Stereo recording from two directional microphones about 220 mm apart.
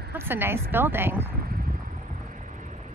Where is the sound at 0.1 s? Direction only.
10° right (ahead or behind).